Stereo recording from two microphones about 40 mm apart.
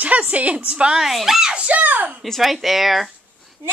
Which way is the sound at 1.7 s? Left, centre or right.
Right.